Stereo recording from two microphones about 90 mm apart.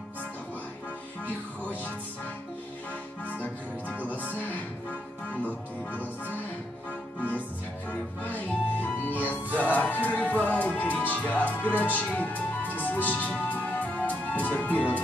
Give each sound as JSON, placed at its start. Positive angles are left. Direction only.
{"t": 3.9, "sound": "music", "side_deg": 20}